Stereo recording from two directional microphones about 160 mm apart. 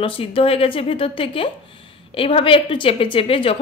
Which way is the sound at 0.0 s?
35° left (ahead or behind).